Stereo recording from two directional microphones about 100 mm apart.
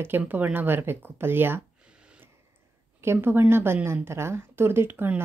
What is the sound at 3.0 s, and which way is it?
Speech, 25° right (ahead or behind).